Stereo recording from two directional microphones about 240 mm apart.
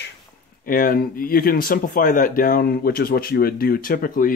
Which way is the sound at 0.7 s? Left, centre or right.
Left.